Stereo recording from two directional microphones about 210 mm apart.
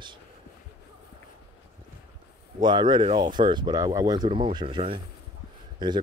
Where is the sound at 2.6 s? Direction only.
20° right (ahead or behind).